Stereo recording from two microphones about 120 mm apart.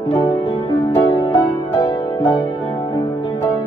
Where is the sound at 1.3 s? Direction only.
20° left (ahead or behind).